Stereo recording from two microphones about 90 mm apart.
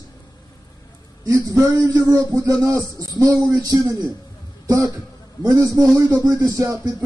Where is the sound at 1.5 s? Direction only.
35° right (ahead or behind).